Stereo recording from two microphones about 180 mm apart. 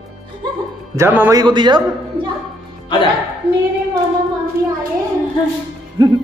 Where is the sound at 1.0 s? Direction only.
15° right (ahead or behind).